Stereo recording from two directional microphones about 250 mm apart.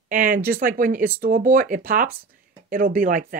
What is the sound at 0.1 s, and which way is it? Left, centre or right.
Speech, right.